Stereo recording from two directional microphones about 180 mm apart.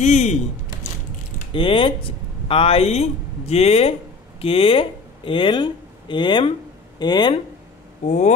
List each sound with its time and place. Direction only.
0.0 s speech: 40° left (ahead or behind)
1.5 s speech: 30° left (ahead or behind)